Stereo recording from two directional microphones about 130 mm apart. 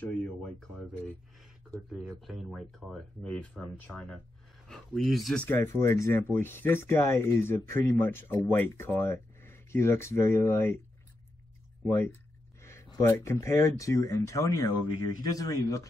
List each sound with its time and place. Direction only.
0.0 s speech: 10° left (ahead or behind)
1.9 s speech: 5° right (ahead or behind)
5.4 s speech: 20° left (ahead or behind)
11.9 s a sound: 20° left (ahead or behind)
13.0 s speech: 20° left (ahead or behind)